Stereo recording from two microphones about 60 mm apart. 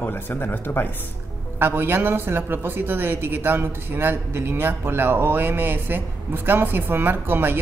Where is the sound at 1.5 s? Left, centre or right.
Right.